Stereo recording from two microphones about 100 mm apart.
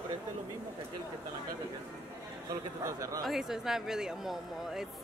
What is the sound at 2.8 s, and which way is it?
Speech, 35° right (ahead or behind).